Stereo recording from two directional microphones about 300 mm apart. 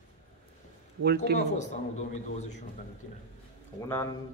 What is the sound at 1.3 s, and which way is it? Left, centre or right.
Speech, left.